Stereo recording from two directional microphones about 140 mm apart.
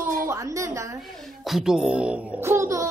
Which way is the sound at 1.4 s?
5° right (ahead or behind).